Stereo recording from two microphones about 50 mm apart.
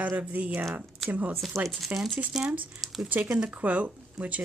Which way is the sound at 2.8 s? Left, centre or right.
Centre.